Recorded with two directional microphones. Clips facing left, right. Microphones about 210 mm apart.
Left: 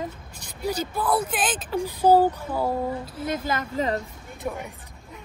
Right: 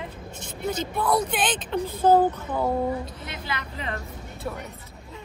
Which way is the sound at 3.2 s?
45° left (ahead or behind).